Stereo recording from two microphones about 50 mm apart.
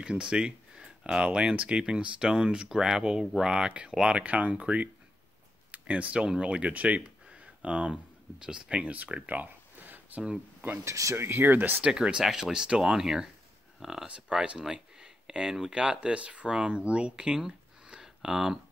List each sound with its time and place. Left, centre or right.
0.0 s speech: centre; by 10.2 s right
10.8 s speech: right
11.1 s speech: right
11.8 s speech: right